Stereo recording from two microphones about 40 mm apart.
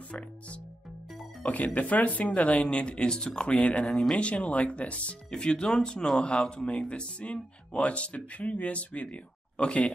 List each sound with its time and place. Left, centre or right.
1.4 s speech: left
3.8 s speech: centre
4.2 s speech: left
5.4 s speech: left
6.2 s speech: left